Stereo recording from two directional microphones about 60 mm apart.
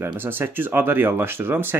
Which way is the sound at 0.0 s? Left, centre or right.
Right.